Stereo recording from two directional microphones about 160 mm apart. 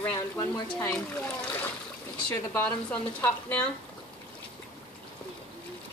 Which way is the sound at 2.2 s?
10° left (ahead or behind).